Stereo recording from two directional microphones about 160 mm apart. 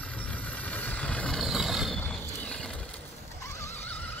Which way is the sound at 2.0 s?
10° left (ahead or behind).